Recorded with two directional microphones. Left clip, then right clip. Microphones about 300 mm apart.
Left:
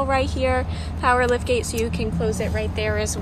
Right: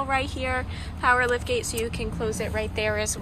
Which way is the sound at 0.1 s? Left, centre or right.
Centre.